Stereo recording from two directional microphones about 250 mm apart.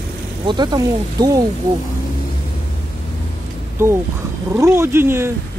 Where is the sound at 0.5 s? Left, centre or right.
Centre.